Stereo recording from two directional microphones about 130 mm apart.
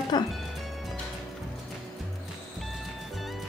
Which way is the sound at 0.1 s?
35° left (ahead or behind).